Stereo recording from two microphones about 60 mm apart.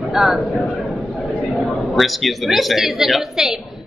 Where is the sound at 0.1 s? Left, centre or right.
Centre.